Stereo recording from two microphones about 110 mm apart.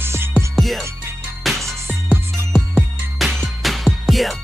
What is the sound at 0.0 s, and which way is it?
Music, 20° right (ahead or behind).